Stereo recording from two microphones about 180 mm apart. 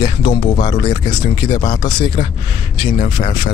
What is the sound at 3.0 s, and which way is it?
Speech, 30° left (ahead or behind).